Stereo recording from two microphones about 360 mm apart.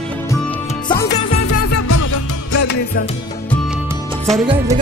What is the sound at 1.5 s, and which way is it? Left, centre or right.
Music, left.